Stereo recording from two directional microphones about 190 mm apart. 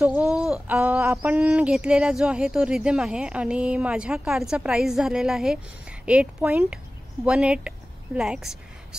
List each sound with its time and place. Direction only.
0.0 s a woman's voice: 10° right (ahead or behind)